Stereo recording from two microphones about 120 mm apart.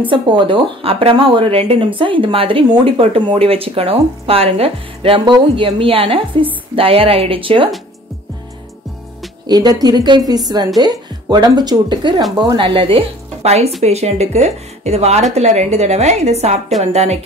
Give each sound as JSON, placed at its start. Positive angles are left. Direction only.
{"t": 0.1, "sound": "speech", "side_deg": -45}
{"t": 9.5, "sound": "a woman's voice", "side_deg": -35}